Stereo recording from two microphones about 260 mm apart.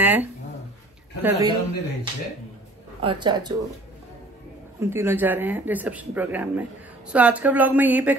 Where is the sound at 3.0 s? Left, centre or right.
Centre.